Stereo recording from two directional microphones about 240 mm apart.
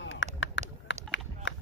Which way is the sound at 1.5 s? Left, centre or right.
Left.